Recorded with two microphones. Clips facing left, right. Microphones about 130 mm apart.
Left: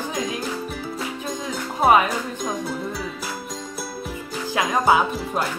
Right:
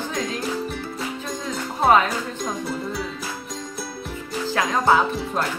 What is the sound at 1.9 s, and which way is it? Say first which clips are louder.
Music: even; 10° left (ahead or behind).